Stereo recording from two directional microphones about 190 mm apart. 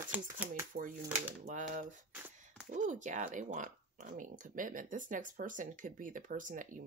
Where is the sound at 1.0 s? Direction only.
10° right (ahead or behind).